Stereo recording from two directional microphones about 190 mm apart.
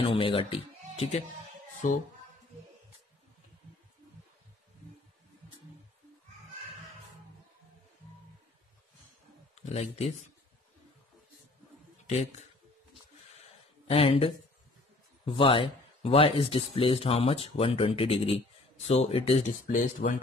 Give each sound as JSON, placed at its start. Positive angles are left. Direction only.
{"t": 0.0, "sound": "speech", "side_deg": 30}
{"t": 9.6, "sound": "speech", "side_deg": 35}
{"t": 13.8, "sound": "speech", "side_deg": 30}